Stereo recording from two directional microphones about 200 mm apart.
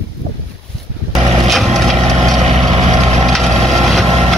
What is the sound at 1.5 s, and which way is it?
Boat, centre (ahead or behind).